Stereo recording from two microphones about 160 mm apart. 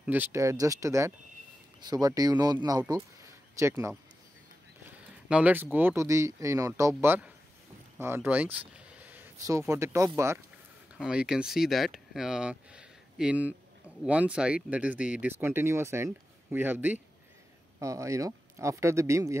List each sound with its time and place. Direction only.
0.0 s speech: 10° right (ahead or behind)
11.0 s speech: 5° right (ahead or behind)